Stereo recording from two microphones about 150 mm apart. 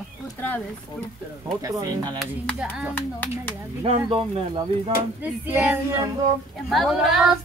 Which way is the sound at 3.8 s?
40° right (ahead or behind).